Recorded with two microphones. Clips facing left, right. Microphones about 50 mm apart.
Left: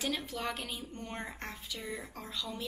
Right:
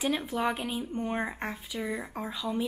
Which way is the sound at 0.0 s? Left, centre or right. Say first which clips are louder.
Right 7 dB; centre.